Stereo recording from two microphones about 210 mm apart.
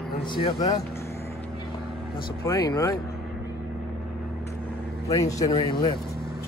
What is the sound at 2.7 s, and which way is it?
Speech, 15° left (ahead or behind).